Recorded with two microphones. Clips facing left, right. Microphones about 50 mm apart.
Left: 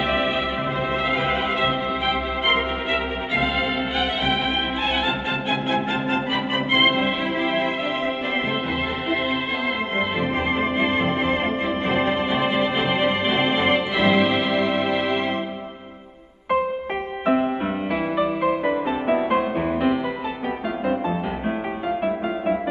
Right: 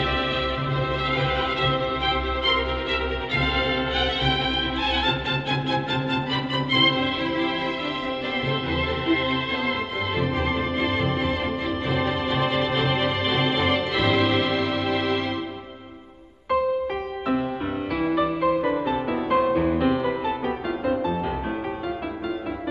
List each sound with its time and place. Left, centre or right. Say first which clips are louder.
1.2 s music: left 2 dB; left
6.7 s music: left 2 dB; left
10.8 s music: left 3 dB; left
18.0 s music: right 1 dB; centre